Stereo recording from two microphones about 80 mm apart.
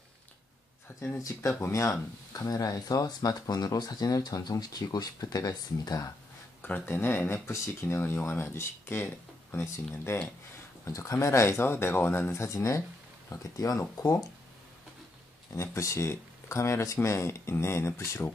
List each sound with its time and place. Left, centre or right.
1.3 s speech: left
1.7 s speech: left
6.6 s speech: left
15.5 s speech: left